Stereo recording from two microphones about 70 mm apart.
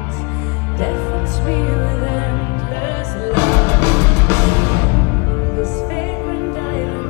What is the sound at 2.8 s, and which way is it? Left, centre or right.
Music, left.